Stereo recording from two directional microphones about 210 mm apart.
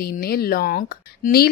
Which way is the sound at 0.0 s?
45° left (ahead or behind).